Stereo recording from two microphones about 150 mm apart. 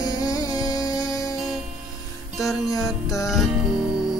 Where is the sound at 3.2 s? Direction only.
Centre (ahead or behind).